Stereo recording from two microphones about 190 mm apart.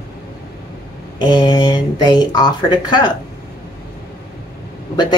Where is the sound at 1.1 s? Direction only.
25° left (ahead or behind).